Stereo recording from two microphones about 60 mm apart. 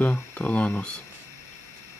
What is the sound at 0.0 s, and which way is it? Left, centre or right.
Speech, left.